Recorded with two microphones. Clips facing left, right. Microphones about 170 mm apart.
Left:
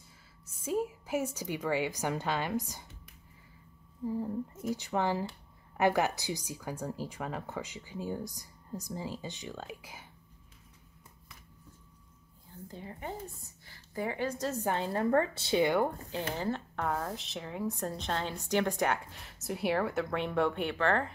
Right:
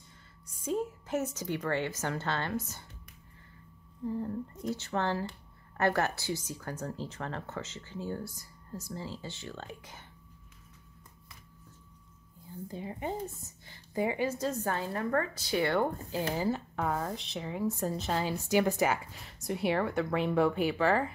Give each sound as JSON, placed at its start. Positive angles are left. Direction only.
{"t": 0.7, "sound": "speech", "side_deg": 10}
{"t": 4.0, "sound": "speech", "side_deg": 10}
{"t": 12.6, "sound": "a woman's voice", "side_deg": -15}
{"t": 14.5, "sound": "speech", "side_deg": 15}
{"t": 14.9, "sound": "speech", "side_deg": 30}
{"t": 15.8, "sound": "speech", "side_deg": 0}